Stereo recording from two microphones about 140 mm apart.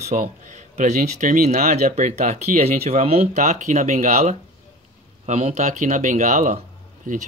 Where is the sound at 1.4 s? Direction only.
60° right (ahead or behind).